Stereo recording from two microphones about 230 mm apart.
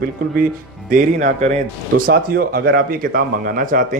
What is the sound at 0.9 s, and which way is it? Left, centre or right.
Speech, right.